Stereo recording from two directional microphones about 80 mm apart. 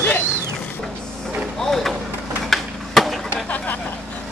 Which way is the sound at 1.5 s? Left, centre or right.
Centre.